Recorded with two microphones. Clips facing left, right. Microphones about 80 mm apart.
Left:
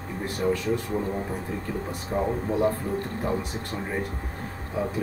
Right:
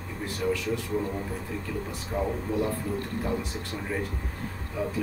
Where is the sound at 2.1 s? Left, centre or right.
Left.